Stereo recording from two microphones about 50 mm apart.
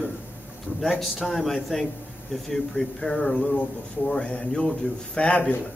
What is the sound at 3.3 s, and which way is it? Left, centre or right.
Speech, left.